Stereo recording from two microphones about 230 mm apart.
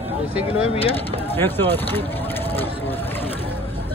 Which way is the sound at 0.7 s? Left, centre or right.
Left.